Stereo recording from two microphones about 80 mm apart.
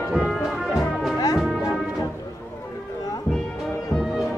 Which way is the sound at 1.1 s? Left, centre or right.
Left.